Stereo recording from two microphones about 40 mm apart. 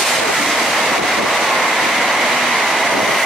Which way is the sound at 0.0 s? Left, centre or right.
Centre.